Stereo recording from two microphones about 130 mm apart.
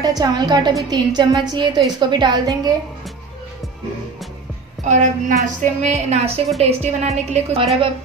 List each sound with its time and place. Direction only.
0.0 s a woman's voice: 30° right (ahead or behind)
4.8 s a woman's voice: 70° right (ahead or behind); by 7.9 s 50° right (ahead or behind)